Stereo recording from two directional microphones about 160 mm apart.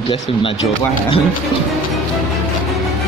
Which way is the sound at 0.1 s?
35° left (ahead or behind).